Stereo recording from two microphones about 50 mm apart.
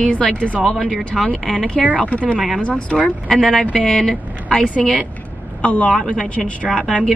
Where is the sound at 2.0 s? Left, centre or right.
Left.